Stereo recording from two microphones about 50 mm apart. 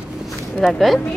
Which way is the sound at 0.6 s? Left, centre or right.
Centre.